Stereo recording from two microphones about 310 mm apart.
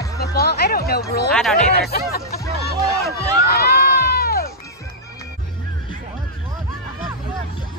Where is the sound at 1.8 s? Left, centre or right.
Left.